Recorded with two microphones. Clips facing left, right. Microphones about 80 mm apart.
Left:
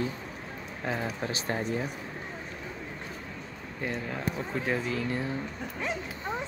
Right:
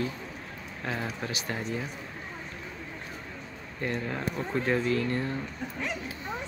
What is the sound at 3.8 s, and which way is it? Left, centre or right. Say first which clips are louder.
Speech: right 1 dB; centre.